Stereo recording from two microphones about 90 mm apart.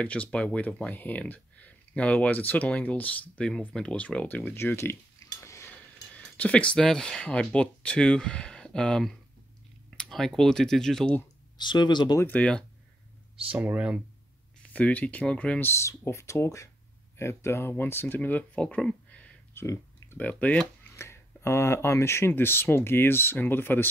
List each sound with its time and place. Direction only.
0.0 s speech: 15° left (ahead or behind)
4.6 s cutlery: 25° left (ahead or behind)
5.7 s speech: 15° left (ahead or behind)
11.5 s speech: 55° left (ahead or behind)
12.3 s speech: 15° left (ahead or behind)
13.5 s speech: 15° right (ahead or behind)
14.6 s speech: 15° left (ahead or behind)
15.6 s speech: 30° left (ahead or behind); by 19.3 s 10° left (ahead or behind)
19.5 s a sound: 30° left (ahead or behind)
20.2 s speech: 15° left (ahead or behind)
20.9 s speech: 30° left (ahead or behind)